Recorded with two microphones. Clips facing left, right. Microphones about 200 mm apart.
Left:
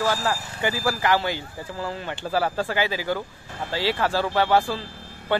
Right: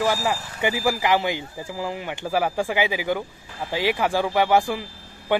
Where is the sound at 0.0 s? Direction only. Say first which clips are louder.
Right 2 dB; 15° right (ahead or behind).